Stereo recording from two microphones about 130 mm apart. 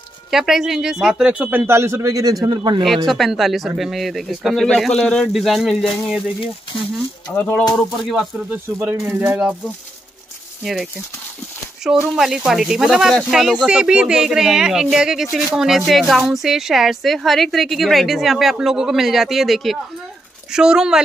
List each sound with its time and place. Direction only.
0.3 s speech: 5° right (ahead or behind); by 2.8 s 35° right (ahead or behind)
3.1 s speech: centre (ahead or behind)
7.3 s a sound: 15° left (ahead or behind)
7.7 s speech: centre (ahead or behind)
8.7 s speech: 15° right (ahead or behind)
10.6 s speech: centre (ahead or behind)